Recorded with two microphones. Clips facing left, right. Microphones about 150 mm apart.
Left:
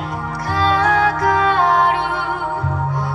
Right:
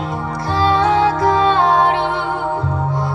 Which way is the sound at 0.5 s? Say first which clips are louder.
Right 2 dB; 25° right (ahead or behind).